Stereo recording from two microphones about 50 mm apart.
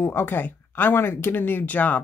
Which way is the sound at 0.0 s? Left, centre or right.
Left.